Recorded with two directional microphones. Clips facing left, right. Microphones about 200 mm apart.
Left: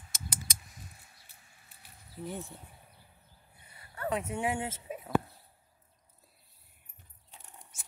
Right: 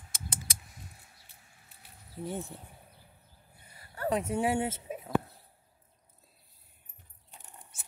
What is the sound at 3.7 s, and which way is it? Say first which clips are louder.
Speech: right 3 dB; 35° right (ahead or behind).